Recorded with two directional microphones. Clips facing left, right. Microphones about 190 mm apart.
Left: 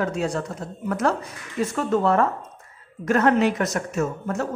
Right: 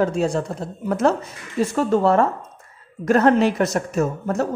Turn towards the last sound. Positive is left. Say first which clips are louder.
# right 4 dB
turn(degrees=-35)  # may be behind; listen again after turning